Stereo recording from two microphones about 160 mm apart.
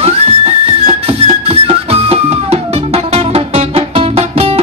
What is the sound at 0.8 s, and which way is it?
Music, 40° right (ahead or behind).